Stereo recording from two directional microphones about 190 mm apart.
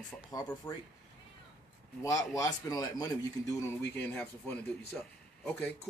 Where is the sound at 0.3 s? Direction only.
15° left (ahead or behind).